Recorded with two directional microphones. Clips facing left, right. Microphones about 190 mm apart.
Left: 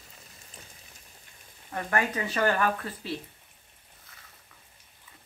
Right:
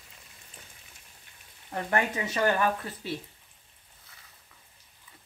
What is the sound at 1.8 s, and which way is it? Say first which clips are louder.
Speech: even; 20° right (ahead or behind).